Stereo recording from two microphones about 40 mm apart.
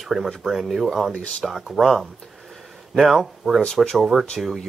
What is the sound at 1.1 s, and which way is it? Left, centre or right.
Speech, left.